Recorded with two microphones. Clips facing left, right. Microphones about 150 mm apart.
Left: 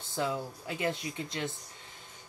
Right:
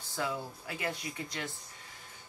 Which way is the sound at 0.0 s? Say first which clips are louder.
Left 3 dB; 25° left (ahead or behind).